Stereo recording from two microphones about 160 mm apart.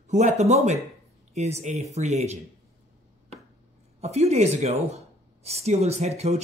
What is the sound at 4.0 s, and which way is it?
Speech, 40° right (ahead or behind).